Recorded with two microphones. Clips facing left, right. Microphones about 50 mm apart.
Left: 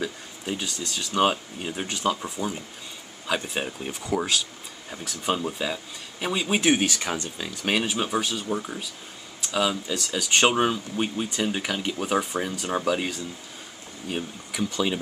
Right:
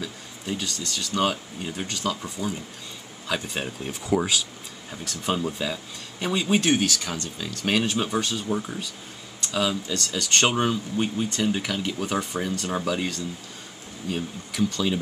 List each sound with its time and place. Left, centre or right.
0.0 s speech: centre
6.8 s speech: left